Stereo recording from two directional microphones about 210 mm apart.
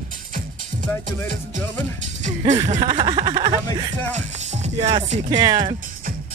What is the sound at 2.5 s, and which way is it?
Speech, 35° right (ahead or behind).